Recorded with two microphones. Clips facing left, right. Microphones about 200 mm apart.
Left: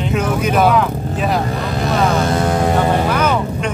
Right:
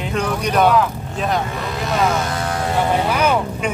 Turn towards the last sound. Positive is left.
turn(degrees=-10)  # may be behind; listen again after turning